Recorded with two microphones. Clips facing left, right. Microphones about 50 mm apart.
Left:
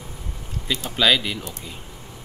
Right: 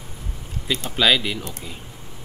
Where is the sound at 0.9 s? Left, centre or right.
Centre.